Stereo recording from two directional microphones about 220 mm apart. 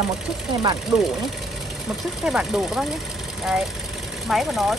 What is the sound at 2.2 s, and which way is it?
Speech, 5° right (ahead or behind).